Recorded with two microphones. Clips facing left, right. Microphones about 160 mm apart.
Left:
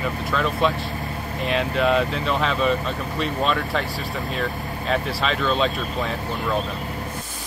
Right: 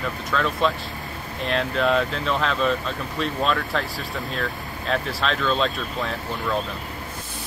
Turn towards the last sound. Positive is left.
turn(degrees=5)  # may be behind; listen again after turning